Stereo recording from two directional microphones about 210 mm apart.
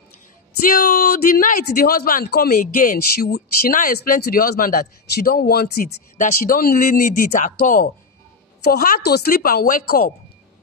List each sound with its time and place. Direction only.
0.7 s speech: 45° left (ahead or behind)